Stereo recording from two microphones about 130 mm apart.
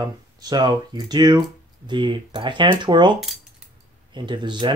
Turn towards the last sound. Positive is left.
turn(degrees=-35)  # may be behind; listen again after turning